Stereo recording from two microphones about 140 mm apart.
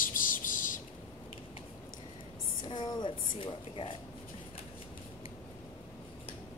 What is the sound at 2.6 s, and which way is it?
A woman's voice, 35° left (ahead or behind).